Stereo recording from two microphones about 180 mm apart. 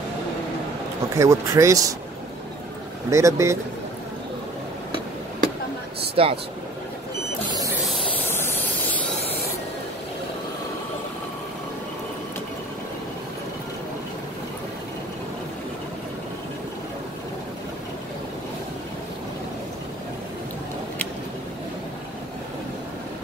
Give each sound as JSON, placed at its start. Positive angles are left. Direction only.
{"t": 1.1, "sound": "speech", "side_deg": -15}
{"t": 3.1, "sound": "speech", "side_deg": -15}
{"t": 6.2, "sound": "speech", "side_deg": -30}
{"t": 8.3, "sound": "vehicle", "side_deg": 15}